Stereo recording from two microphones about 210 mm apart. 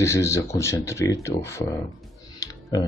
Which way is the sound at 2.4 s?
15° left (ahead or behind).